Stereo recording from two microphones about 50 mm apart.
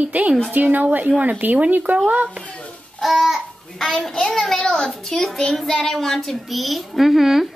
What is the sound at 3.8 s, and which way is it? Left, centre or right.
A child's voice, centre.